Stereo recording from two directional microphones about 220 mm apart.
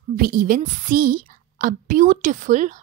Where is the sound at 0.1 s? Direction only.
40° right (ahead or behind).